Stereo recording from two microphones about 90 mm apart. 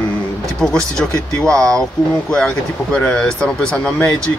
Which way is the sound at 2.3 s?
10° left (ahead or behind).